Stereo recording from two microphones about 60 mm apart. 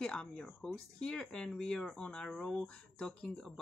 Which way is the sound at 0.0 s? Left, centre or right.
Centre.